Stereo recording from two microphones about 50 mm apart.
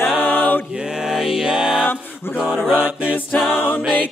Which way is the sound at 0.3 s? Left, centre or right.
Left.